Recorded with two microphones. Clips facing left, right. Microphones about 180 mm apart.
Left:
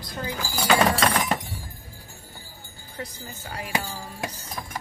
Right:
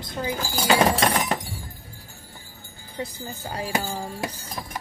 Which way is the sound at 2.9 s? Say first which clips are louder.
Right 4 dB; 30° right (ahead or behind).